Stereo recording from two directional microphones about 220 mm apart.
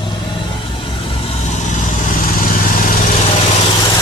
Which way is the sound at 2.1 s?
40° left (ahead or behind).